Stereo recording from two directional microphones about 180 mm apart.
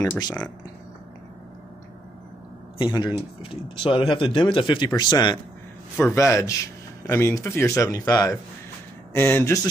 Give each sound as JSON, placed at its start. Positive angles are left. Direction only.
{"t": 0.0, "sound": "speech", "side_deg": 20}
{"t": 2.8, "sound": "speech", "side_deg": 25}